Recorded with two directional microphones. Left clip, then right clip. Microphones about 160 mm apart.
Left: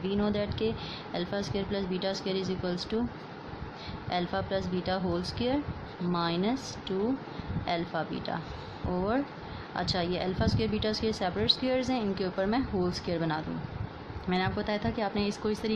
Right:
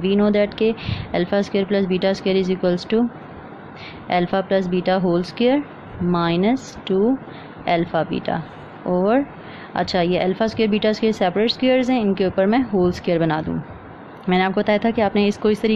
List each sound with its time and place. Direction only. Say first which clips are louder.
0.0 s a woman's voice: right 13 dB; 35° right (ahead or behind)
4.1 s a woman's voice: right 12 dB; 35° right (ahead or behind)
7.6 s a woman's voice: right 13 dB; 35° right (ahead or behind)